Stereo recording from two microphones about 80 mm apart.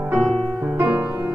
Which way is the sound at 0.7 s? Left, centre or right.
Right.